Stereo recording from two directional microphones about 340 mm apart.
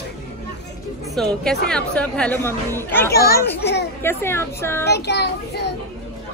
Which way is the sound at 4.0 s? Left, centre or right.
Centre.